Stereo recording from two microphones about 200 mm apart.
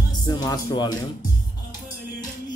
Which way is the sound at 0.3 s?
20° left (ahead or behind).